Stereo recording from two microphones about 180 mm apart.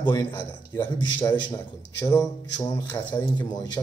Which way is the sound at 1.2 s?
20° left (ahead or behind).